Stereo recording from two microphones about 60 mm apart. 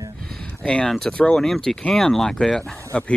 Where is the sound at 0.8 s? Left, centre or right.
Centre.